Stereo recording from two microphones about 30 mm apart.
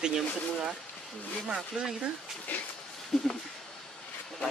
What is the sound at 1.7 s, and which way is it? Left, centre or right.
Speech, right.